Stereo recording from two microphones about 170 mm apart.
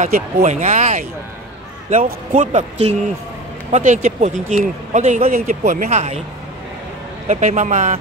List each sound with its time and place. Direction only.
0.0 s speech: 50° right (ahead or behind)
2.0 s speech: 45° right (ahead or behind)
7.2 s speech: 45° right (ahead or behind)